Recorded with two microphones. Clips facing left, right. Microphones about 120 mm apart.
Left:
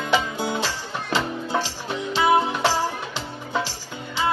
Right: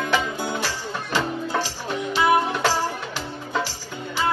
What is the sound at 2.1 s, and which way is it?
Music, 20° left (ahead or behind).